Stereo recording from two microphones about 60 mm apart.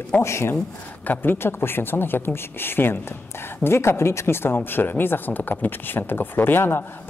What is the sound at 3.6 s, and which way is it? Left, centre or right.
A woman's voice, left.